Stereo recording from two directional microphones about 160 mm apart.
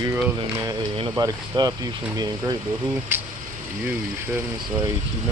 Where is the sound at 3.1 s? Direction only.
15° right (ahead or behind).